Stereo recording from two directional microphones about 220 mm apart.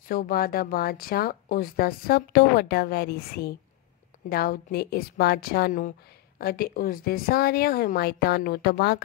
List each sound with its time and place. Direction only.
0.1 s a woman's voice: 40° left (ahead or behind)